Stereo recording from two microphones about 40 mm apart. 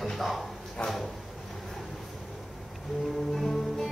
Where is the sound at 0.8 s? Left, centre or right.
Left.